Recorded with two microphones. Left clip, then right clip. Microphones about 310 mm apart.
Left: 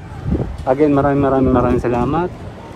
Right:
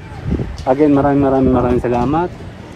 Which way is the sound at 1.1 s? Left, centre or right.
Right.